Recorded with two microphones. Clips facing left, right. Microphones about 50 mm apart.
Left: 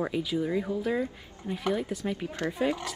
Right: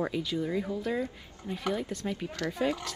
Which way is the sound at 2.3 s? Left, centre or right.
Left.